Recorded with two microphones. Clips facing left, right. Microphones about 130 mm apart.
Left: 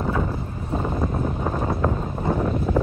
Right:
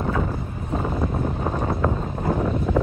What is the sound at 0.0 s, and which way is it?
Boat, centre (ahead or behind).